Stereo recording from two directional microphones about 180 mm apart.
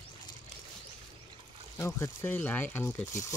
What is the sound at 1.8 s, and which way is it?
Speech, 15° left (ahead or behind).